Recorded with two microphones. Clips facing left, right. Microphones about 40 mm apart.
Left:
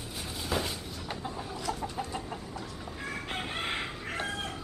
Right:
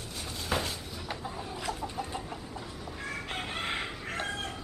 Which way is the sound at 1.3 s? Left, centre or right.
Centre.